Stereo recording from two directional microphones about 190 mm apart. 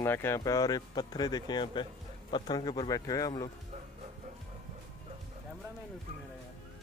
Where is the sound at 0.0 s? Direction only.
10° left (ahead or behind).